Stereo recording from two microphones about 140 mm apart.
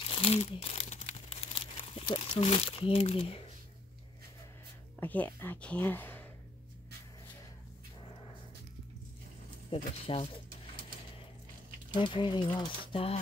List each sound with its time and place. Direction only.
0.2 s crumpling: 45° left (ahead or behind)
2.0 s speech: 40° left (ahead or behind)
5.0 s speech: 10° left (ahead or behind)
9.7 s speech: 40° left (ahead or behind)
12.0 s speech: 35° left (ahead or behind)